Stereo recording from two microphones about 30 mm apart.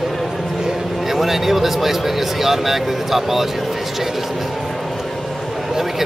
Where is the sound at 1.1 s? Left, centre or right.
Centre.